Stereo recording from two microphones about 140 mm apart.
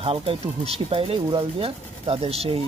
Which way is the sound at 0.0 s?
45° right (ahead or behind).